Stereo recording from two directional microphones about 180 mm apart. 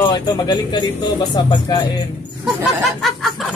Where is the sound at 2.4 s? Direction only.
Centre (ahead or behind).